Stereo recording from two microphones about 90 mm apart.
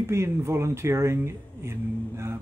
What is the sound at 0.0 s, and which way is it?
Speech, 30° right (ahead or behind).